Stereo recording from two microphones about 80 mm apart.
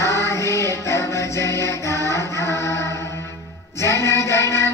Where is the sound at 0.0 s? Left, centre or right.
Left.